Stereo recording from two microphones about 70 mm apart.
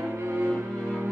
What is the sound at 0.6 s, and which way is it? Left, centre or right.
Music, right.